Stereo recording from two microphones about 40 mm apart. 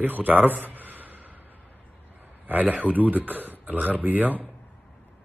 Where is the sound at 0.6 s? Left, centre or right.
Right.